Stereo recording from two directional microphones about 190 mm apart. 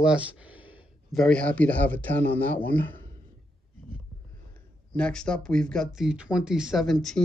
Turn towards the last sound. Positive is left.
turn(degrees=0)  # may be behind; listen again after turning